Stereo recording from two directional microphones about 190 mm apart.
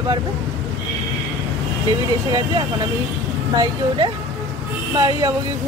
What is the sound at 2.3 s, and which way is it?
A woman's voice, 20° right (ahead or behind).